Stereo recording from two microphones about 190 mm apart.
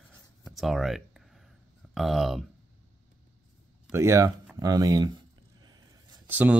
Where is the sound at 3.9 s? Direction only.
15° right (ahead or behind).